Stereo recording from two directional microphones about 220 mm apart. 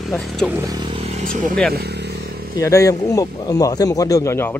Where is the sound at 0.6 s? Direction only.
20° right (ahead or behind); by 1.6 s 40° right (ahead or behind).